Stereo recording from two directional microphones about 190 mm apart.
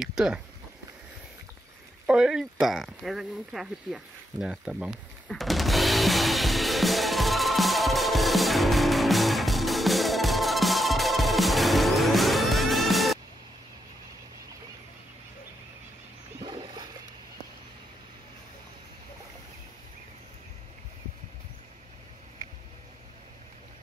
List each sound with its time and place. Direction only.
0.0 s speech: 5° right (ahead or behind)
2.0 s a sound: 5° right (ahead or behind)
16.4 s splash: 20° right (ahead or behind)